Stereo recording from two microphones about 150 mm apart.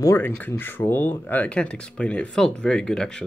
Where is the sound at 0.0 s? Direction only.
15° left (ahead or behind).